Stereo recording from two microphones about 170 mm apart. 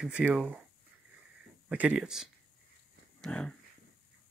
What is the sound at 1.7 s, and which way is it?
Speech, 5° right (ahead or behind).